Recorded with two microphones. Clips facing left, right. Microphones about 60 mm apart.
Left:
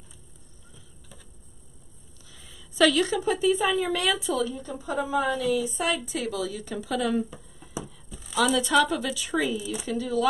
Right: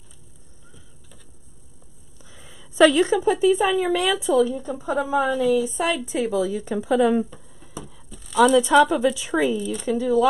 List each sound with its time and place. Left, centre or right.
2.3 s a sound: right
3.2 s a woman's voice: centre
5.6 s speech: right
7.2 s a sound: centre
8.5 s a woman's voice: centre
9.6 s speech: centre
9.8 s a woman's voice: centre